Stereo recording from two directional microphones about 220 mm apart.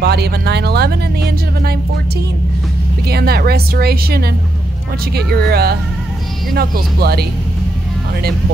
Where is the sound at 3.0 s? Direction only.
45° right (ahead or behind).